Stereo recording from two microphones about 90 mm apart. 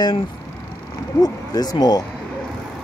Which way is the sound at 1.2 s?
45° left (ahead or behind).